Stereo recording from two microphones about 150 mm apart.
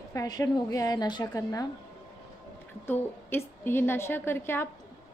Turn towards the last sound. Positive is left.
turn(degrees=15)  # may be behind; listen again after turning